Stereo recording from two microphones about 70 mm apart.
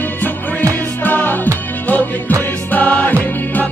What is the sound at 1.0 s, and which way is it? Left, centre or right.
Music, left.